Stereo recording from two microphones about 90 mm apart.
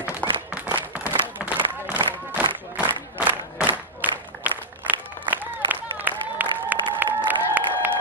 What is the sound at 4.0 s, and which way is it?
Applause, 20° right (ahead or behind).